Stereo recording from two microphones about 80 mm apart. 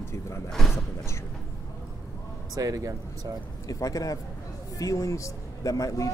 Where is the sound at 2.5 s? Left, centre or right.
Right.